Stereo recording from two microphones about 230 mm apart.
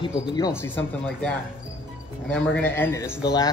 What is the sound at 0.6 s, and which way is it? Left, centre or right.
A man's voice, centre.